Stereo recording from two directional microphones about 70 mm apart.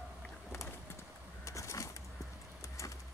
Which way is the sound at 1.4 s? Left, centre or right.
Left.